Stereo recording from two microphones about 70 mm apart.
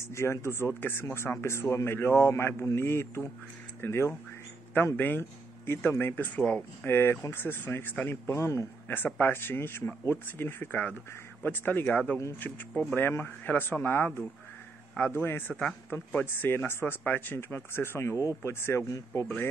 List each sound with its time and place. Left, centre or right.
0.1 s speech: left
6.3 s speech: centre
6.9 s speech: left
8.1 s speech: left
8.8 s speech: left